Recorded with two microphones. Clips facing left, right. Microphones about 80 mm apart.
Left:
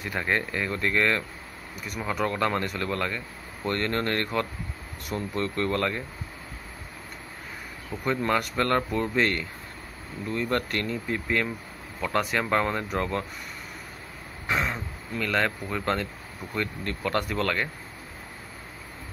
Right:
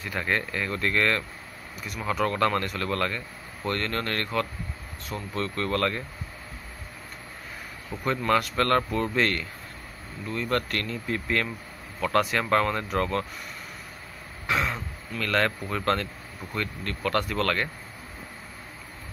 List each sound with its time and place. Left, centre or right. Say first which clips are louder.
0.0 s speech: left 1 dB; centre
2.2 s speech: right 2 dB; centre
7.9 s speech: even; centre
8.5 s speech: right 1 dB; centre
14.5 s speech: right 1 dB; centre
16.5 s speech: left 1 dB; left